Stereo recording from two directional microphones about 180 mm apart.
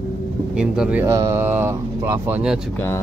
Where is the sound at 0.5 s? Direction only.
5° right (ahead or behind).